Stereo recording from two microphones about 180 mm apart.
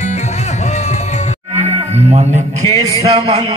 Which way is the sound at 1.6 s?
35° right (ahead or behind).